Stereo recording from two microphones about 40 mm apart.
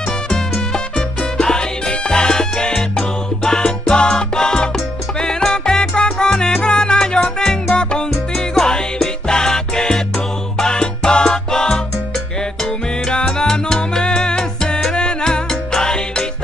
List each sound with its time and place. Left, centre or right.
1.4 s music: centre
5.2 s salsa music: centre
8.5 s music: centre
13.1 s salsa music: centre